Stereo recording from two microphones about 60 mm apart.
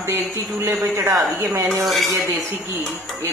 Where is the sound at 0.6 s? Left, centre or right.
Right.